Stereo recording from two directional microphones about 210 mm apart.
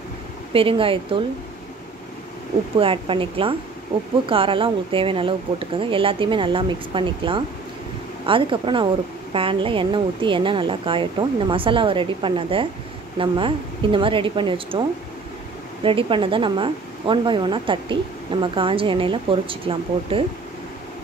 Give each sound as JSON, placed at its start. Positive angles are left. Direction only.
{"t": 0.5, "sound": "a woman's voice", "side_deg": -25}
{"t": 2.8, "sound": "a woman's voice", "side_deg": -25}